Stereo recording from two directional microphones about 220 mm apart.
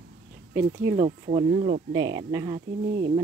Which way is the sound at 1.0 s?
25° right (ahead or behind).